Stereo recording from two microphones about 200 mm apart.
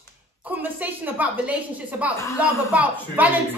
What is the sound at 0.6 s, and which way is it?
Speech, 10° right (ahead or behind).